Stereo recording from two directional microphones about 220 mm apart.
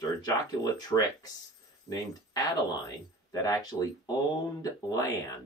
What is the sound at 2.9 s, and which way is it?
Speech, 15° left (ahead or behind).